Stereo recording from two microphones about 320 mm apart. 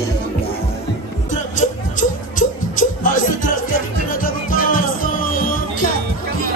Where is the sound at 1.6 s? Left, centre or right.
Left.